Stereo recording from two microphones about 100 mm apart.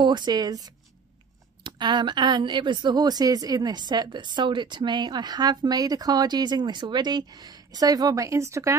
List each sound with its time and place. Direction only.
0.0 s a woman's voice: 45° right (ahead or behind); by 8.7 s 30° right (ahead or behind)